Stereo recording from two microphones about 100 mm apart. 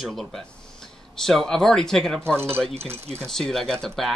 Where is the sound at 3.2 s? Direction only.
5° left (ahead or behind).